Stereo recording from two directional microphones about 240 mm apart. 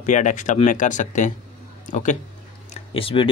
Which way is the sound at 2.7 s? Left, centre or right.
Left.